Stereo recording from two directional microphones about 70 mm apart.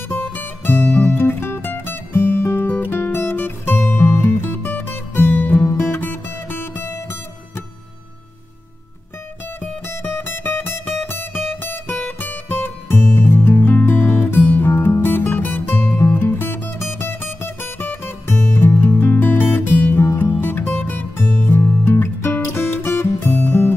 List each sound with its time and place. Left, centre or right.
0.1 s music: left
9.6 s music: left
14.0 s music: centre
14.7 s music: left
18.7 s music: centre
18.9 s music: left